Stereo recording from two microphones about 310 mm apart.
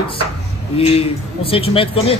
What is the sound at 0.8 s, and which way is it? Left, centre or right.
A man's voice, centre.